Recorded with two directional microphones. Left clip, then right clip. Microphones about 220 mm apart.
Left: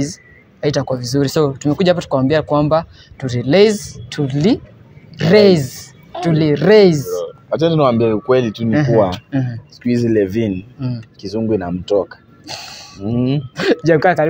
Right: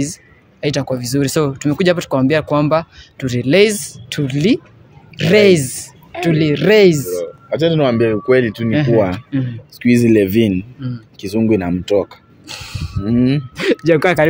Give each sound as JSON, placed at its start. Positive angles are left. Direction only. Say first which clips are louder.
{"t": 0.0, "sound": "speech", "louder": "even", "side_deg": -10}
{"t": 9.8, "sound": "speech", "louder": "right 3 dB", "side_deg": -35}